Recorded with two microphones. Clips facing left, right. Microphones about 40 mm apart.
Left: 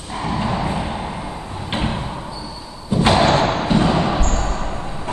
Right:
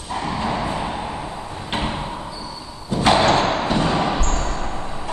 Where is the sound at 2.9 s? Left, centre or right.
Centre.